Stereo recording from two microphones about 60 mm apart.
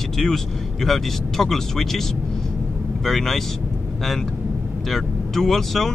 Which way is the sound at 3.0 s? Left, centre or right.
Centre.